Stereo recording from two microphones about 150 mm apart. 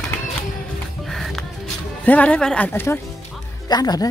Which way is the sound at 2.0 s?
10° left (ahead or behind).